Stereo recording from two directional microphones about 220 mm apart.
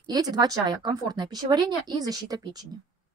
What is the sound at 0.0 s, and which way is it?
A woman's voice, 20° right (ahead or behind).